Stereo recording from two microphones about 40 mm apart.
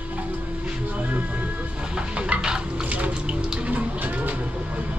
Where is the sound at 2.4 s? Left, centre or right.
Right.